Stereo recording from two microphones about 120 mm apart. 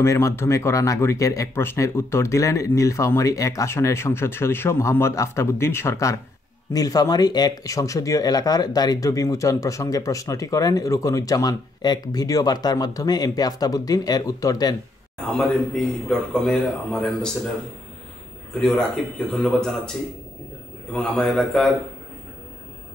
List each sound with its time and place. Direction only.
0.0 s speech: 25° left (ahead or behind)
15.2 s a man's voice: 5° left (ahead or behind)
18.5 s a man's voice: 5° left (ahead or behind)
20.9 s a man's voice: 5° left (ahead or behind)